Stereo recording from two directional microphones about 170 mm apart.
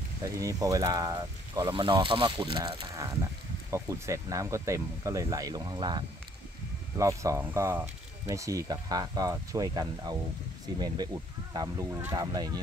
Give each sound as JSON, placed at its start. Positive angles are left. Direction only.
{"t": 0.4, "sound": "speech", "side_deg": -20}